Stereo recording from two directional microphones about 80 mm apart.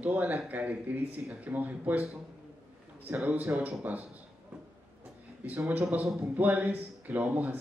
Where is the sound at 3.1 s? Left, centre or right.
Right.